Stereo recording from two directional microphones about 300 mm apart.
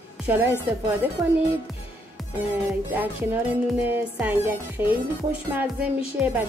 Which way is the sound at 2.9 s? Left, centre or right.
Centre.